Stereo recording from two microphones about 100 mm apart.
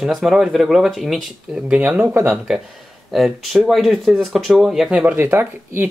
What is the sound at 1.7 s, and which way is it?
Speech, 15° right (ahead or behind).